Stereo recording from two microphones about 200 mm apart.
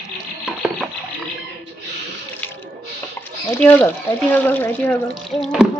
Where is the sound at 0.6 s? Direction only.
Centre (ahead or behind).